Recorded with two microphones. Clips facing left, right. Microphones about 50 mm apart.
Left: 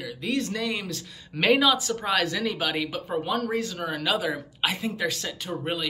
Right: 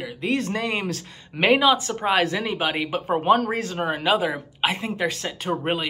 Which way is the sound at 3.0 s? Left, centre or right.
Right.